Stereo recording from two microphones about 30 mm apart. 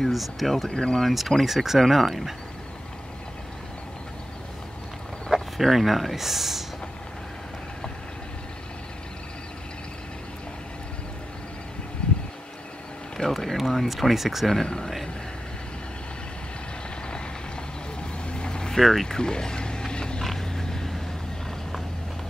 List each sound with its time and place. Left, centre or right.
0.1 s speech: centre
0.7 s speech: left
1.0 s speech: centre
1.8 s speech: centre
5.6 s speech: centre
12.0 s a sound: left
13.2 s speech: left
13.6 s speech: centre
18.3 s vehicle: left
18.7 s speech: centre
19.0 s speech: left
19.9 s creak: left
20.3 s vehicle: centre